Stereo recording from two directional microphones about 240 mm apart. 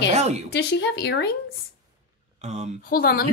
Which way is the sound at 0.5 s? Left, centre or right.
Left.